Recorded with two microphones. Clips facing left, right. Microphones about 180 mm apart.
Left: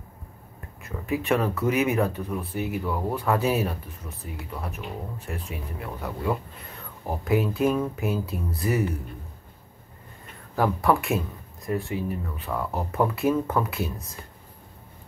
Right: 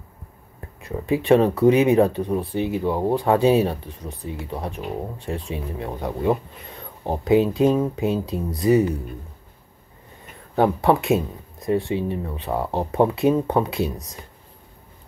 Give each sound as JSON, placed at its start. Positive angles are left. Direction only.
{"t": 0.8, "sound": "speech", "side_deg": -30}
{"t": 10.5, "sound": "speech", "side_deg": -25}